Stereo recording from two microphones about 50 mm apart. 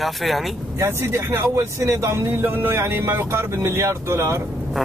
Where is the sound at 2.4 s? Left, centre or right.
Right.